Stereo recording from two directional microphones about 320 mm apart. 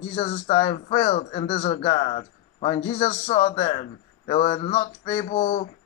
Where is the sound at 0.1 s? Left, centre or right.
Centre.